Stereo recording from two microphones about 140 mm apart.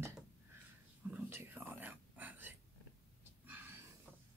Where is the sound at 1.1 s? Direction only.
15° right (ahead or behind).